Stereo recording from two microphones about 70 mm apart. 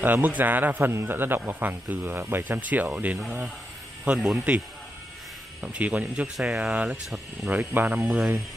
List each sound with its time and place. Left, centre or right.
0.0 s a man's voice: right